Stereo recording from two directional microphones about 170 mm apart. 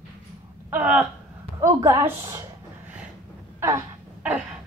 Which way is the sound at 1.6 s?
20° right (ahead or behind).